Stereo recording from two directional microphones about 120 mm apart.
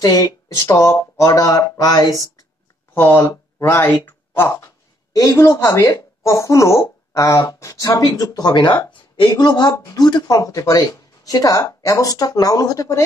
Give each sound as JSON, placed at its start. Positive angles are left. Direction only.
{"t": 0.0, "sound": "speech", "side_deg": 30}
{"t": 2.9, "sound": "speech", "side_deg": 20}